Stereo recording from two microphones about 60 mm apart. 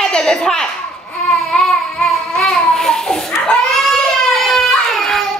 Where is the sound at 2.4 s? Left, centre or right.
Centre.